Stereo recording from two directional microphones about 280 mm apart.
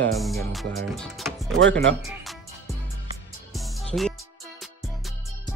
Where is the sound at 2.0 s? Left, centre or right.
Centre.